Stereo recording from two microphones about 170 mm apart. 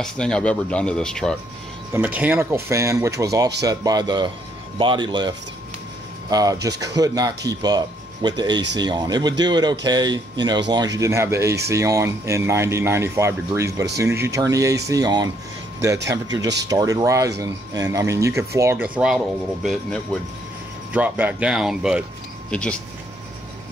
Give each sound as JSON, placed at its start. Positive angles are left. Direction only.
{"t": 0.0, "sound": "speech", "side_deg": 5}
{"t": 2.0, "sound": "speech", "side_deg": -10}
{"t": 6.3, "sound": "speech", "side_deg": -20}
{"t": 20.9, "sound": "speech", "side_deg": -10}